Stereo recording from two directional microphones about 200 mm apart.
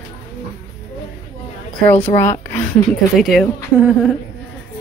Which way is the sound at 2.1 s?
15° left (ahead or behind).